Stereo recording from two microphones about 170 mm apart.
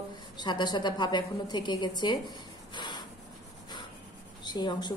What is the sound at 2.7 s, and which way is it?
Spray, 25° left (ahead or behind).